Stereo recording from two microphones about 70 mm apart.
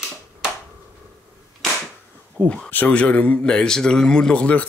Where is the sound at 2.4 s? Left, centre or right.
Right.